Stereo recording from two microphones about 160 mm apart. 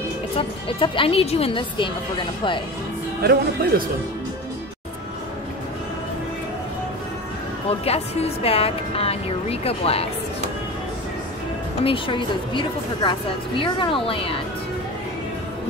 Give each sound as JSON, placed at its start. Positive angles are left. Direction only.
{"t": 0.4, "sound": "speech", "side_deg": 35}
{"t": 3.2, "sound": "speech", "side_deg": -75}
{"t": 7.8, "sound": "speech", "side_deg": 40}
{"t": 11.8, "sound": "speech", "side_deg": 30}